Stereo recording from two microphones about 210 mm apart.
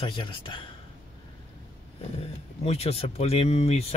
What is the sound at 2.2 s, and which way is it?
Speech, 30° left (ahead or behind).